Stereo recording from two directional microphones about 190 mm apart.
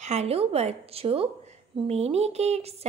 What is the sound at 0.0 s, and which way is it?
A woman's voice, 35° right (ahead or behind).